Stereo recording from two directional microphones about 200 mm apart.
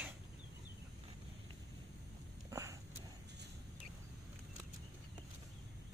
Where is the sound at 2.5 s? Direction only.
15° right (ahead or behind).